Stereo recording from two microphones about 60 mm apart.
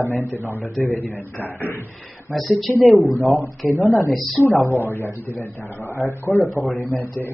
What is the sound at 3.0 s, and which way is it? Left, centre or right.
Speech, left.